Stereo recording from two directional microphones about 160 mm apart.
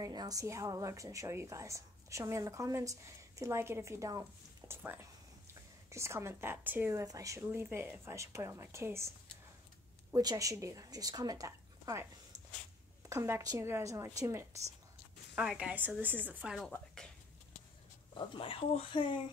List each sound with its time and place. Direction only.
0.0 s a woman's voice: 25° right (ahead or behind)
10.1 s a woman's voice: 20° right (ahead or behind)
15.3 s speech: 5° right (ahead or behind)
18.1 s speech: 30° left (ahead or behind)